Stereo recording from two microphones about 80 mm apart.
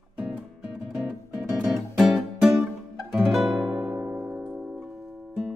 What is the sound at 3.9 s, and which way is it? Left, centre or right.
Music, centre.